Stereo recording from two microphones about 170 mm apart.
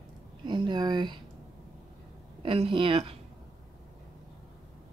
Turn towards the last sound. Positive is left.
turn(degrees=-30)  # may be behind; listen again after turning